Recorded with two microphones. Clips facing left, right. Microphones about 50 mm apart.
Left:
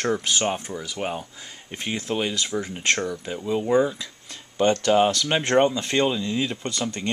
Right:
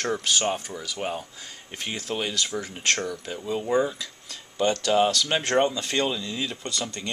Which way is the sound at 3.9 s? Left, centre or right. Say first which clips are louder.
Even; left.